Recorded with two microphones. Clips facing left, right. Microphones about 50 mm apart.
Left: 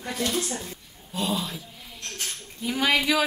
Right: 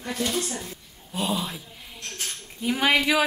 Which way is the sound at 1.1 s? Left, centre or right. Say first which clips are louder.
Right 1 dB; centre.